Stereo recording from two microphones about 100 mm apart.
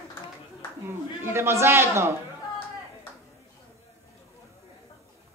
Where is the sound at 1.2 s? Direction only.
25° right (ahead or behind).